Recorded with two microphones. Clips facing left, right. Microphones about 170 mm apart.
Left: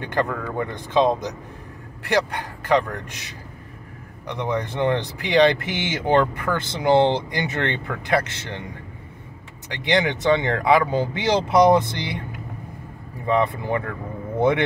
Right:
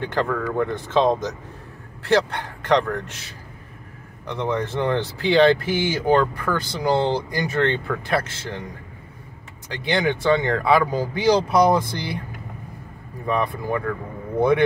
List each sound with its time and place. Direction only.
0.1 s speech: 15° left (ahead or behind)
9.8 s speech: 20° left (ahead or behind)
13.3 s speech: 25° left (ahead or behind)